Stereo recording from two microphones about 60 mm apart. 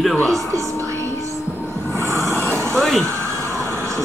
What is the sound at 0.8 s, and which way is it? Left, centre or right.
Music, right.